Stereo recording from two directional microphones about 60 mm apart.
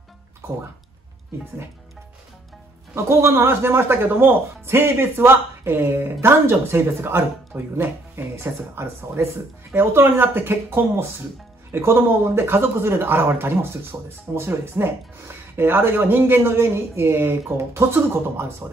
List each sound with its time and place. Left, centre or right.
0.4 s speech: right
2.9 s speech: right